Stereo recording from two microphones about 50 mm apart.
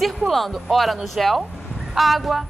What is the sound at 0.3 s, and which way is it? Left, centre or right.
Speech, centre.